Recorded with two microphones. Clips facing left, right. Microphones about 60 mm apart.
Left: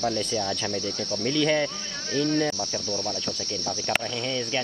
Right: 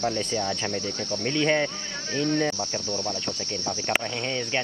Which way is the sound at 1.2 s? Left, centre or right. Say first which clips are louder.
Even; right.